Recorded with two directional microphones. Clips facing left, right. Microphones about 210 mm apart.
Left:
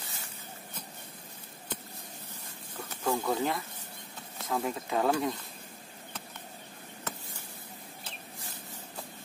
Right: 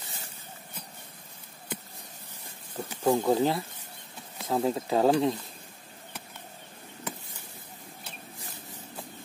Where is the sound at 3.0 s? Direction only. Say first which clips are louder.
Right 6 dB; 20° right (ahead or behind).